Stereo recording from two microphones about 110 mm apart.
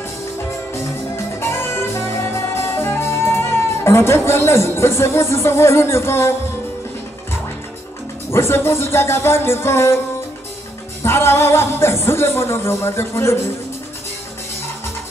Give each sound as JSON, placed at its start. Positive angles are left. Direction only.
{"t": 0.7, "sound": "music", "side_deg": 25}
{"t": 8.3, "sound": "music", "side_deg": 25}
{"t": 11.0, "sound": "music", "side_deg": 25}